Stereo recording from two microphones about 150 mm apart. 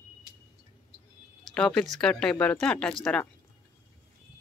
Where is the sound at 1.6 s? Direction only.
5° left (ahead or behind).